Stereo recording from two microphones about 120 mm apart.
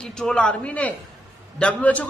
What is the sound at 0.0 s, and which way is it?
A man's voice, 5° left (ahead or behind).